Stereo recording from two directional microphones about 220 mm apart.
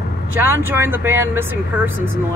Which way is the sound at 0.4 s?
10° right (ahead or behind).